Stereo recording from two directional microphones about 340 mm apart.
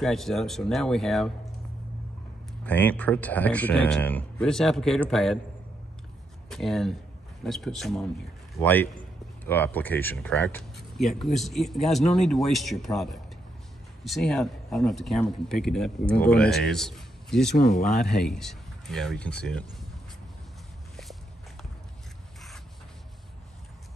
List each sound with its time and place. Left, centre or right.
0.0 s speech: centre
2.6 s speech: centre
6.5 s speech: centre
17.6 s speech: left
18.0 s speech: centre
20.9 s walk: centre